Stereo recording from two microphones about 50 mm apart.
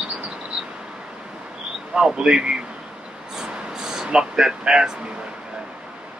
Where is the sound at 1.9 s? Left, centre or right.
Centre.